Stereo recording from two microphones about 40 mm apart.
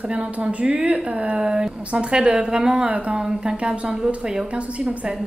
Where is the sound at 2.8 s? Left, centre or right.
Right.